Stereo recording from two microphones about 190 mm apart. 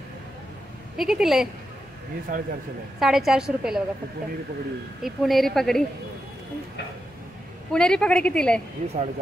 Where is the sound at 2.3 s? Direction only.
50° right (ahead or behind).